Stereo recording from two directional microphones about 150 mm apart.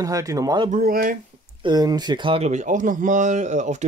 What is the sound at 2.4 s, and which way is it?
Speech, 55° right (ahead or behind).